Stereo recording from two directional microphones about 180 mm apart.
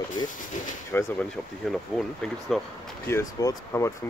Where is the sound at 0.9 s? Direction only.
10° left (ahead or behind).